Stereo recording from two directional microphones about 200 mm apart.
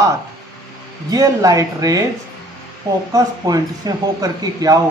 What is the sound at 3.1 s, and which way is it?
Speech, 20° right (ahead or behind).